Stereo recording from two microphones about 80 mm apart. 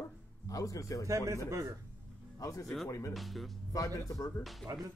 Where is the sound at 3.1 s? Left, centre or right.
Centre.